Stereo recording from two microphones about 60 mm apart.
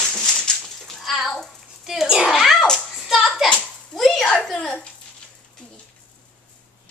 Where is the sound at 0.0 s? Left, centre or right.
Centre.